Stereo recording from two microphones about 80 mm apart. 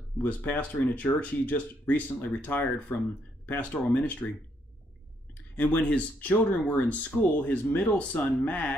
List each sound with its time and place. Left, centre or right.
0.2 s speech: left
5.8 s speech: centre